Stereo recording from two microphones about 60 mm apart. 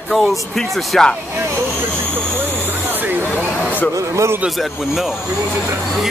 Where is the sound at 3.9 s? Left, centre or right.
Right.